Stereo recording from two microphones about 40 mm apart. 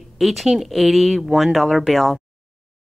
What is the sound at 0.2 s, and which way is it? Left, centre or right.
Speech, centre.